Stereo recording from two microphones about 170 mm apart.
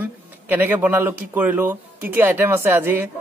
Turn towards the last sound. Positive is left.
turn(degrees=-10)  # may be behind; listen again after turning